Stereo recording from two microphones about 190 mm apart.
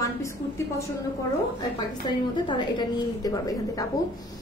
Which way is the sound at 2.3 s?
25° left (ahead or behind).